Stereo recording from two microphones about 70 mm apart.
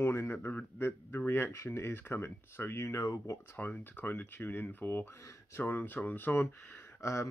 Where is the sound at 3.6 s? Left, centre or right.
Left.